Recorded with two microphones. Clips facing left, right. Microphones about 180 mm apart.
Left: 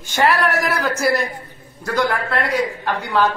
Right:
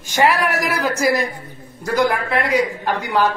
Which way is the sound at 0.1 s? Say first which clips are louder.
Even; 10° right (ahead or behind).